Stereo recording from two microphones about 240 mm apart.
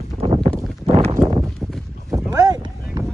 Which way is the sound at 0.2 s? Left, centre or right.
Right.